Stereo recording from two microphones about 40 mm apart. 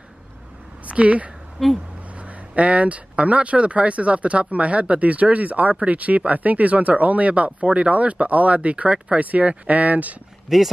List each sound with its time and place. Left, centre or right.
0.8 s speech: right
1.6 s speech: centre
2.1 s speech: right
9.2 s speech: right
10.5 s speech: centre